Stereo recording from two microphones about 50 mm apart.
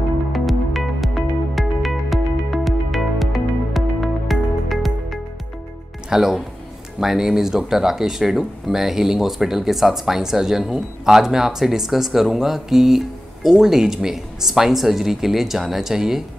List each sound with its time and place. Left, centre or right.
0.3 s music: centre
6.0 s speech: centre